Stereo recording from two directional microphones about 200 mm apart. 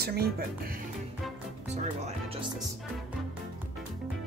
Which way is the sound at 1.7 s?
35° right (ahead or behind).